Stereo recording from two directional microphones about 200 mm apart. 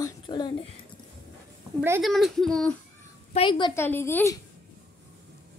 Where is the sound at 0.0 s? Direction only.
20° left (ahead or behind).